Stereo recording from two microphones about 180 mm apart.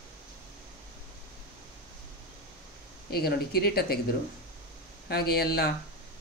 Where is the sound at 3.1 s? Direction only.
60° left (ahead or behind).